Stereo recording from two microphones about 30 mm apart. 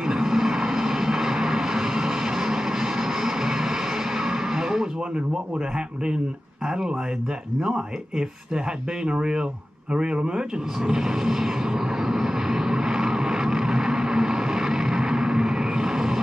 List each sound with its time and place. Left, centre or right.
0.0 s vehicle: centre
7.6 s speech: centre
10.9 s vehicle: centre